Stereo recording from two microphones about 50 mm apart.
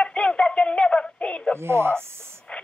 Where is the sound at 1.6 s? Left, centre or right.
Right.